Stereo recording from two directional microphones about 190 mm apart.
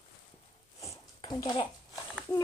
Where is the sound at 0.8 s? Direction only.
20° left (ahead or behind).